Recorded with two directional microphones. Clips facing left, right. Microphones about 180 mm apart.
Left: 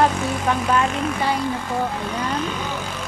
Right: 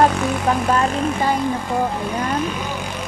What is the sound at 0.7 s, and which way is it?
Speech, 40° right (ahead or behind).